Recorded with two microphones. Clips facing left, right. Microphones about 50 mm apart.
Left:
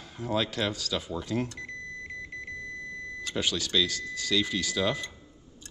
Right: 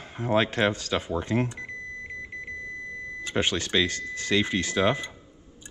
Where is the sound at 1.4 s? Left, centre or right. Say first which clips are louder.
Right 3 dB; right.